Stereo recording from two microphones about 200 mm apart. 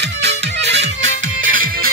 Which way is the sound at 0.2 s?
60° right (ahead or behind).